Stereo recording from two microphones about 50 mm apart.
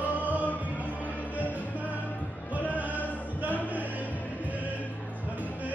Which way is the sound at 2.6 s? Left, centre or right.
Right.